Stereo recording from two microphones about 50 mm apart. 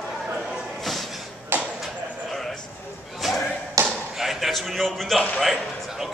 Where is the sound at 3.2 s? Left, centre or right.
Centre.